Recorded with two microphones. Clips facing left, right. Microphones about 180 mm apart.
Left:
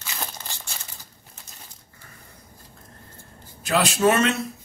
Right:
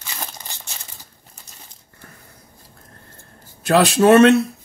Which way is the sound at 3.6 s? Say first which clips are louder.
Right 6 dB; 70° right (ahead or behind).